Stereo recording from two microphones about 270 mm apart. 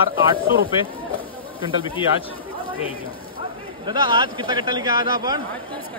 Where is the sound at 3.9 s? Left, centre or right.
Centre.